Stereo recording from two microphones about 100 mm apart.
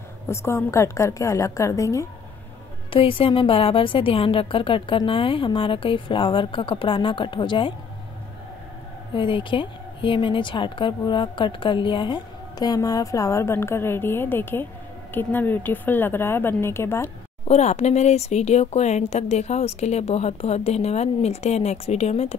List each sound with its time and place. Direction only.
0.3 s a woman's voice: 25° left (ahead or behind)
2.9 s a woman's voice: 60° left (ahead or behind)
9.1 s a woman's voice: 55° left (ahead or behind); by 17.1 s 25° left (ahead or behind)
17.5 s speech: 90° left